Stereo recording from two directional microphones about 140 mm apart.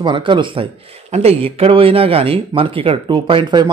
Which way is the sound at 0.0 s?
35° right (ahead or behind).